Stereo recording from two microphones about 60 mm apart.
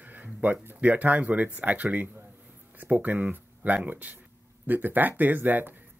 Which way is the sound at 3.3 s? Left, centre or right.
Right.